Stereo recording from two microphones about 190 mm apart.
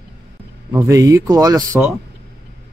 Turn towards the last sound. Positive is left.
turn(degrees=-15)  # may be behind; listen again after turning